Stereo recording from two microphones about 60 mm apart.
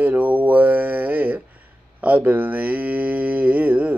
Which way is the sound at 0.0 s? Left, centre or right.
Right.